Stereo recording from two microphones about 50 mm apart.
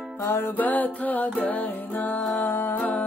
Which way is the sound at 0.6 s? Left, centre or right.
Left.